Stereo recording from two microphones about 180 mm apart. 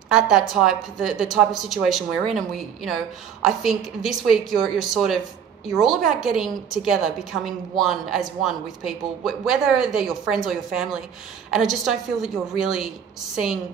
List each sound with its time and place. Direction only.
0.1 s speech: 5° right (ahead or behind)